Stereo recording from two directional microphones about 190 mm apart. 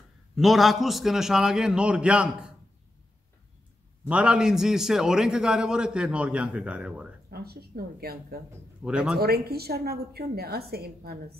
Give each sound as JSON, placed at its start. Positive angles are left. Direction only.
{"t": 0.4, "sound": "a man's voice", "side_deg": 0}
{"t": 4.1, "sound": "a man's voice", "side_deg": -5}
{"t": 7.2, "sound": "speech", "side_deg": -55}
{"t": 8.8, "sound": "a man's voice", "side_deg": -5}
{"t": 9.2, "sound": "a woman's voice", "side_deg": -55}